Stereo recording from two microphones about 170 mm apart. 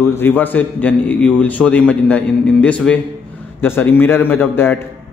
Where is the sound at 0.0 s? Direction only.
15° left (ahead or behind).